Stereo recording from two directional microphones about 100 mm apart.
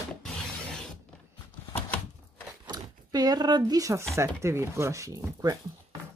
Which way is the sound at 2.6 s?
45° right (ahead or behind).